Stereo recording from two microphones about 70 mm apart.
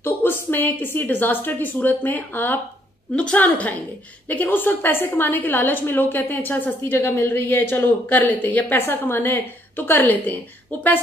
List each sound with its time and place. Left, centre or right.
0.0 s a woman's voice: left